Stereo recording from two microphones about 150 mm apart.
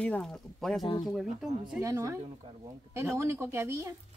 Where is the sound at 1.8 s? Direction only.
20° right (ahead or behind).